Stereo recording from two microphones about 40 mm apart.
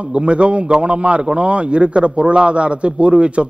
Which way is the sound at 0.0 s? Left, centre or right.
Right.